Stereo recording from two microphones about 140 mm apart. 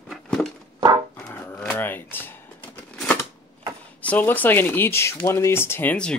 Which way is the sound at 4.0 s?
10° left (ahead or behind).